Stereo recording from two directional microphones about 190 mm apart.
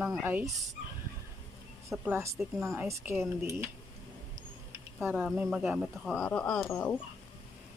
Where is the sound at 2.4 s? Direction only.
Centre (ahead or behind).